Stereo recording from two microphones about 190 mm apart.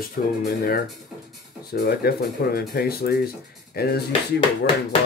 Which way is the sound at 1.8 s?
55° left (ahead or behind).